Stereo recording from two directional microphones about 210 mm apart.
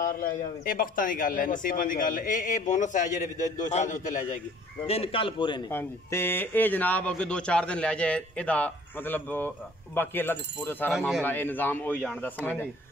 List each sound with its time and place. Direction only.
0.0 s a man's voice: 40° left (ahead or behind); by 5.6 s 25° left (ahead or behind)
5.7 s speech: 10° left (ahead or behind)
10.9 s speech: centre (ahead or behind)
11.2 s speech: 10° left (ahead or behind)